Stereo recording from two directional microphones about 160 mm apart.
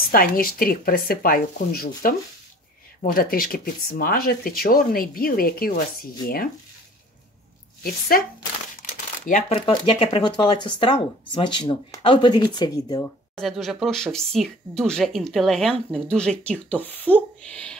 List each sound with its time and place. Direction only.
0.1 s speech: 65° left (ahead or behind)
3.1 s speech: 65° left (ahead or behind)
8.7 s crumpling: 55° left (ahead or behind)
9.5 s speech: 35° left (ahead or behind)
13.0 s speech: centre (ahead or behind)